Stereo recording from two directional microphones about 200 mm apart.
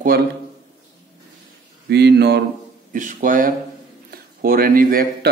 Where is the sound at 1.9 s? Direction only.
55° right (ahead or behind).